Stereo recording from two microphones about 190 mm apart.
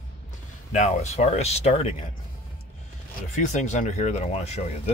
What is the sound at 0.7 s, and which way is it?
Speech, 40° left (ahead or behind).